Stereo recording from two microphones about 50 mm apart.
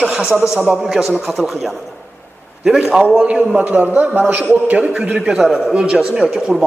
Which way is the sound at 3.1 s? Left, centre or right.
Right.